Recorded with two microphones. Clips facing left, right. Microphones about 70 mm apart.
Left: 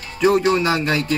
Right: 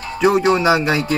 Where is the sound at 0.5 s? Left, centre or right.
Centre.